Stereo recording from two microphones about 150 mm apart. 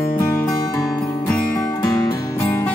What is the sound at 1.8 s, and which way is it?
Music, 15° left (ahead or behind).